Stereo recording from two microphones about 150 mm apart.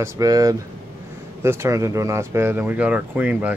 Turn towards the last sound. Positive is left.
turn(degrees=-10)  # may be behind; listen again after turning